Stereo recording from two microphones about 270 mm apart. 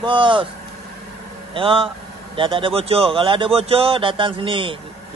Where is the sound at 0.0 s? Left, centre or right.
Centre.